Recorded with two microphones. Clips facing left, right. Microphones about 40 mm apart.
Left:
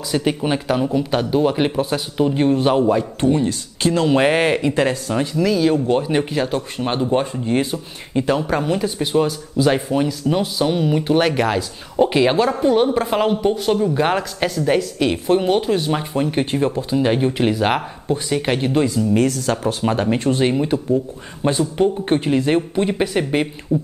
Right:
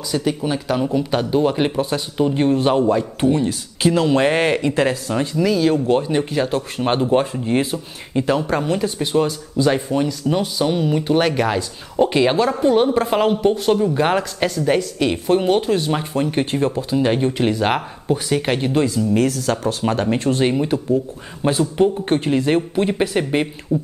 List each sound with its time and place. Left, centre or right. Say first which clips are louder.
0.1 s speech: left 1 dB; left
0.7 s speech: right 1 dB; centre
3.2 s speech: even; centre
4.1 s speech: left 1 dB; centre
6.8 s speech: right 2 dB; centre
9.6 s speech: left 1 dB; left
10.2 s speech: even; centre
18.0 s speech: right 2 dB; centre